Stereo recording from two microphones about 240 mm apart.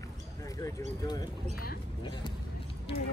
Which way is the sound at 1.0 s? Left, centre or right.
Centre.